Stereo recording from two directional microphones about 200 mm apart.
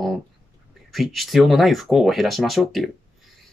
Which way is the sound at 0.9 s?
Centre (ahead or behind).